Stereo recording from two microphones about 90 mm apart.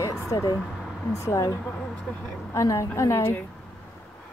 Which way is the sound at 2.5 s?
35° left (ahead or behind).